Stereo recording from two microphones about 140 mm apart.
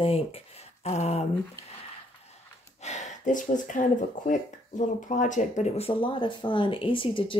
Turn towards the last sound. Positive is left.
turn(degrees=35)  # may be behind; listen again after turning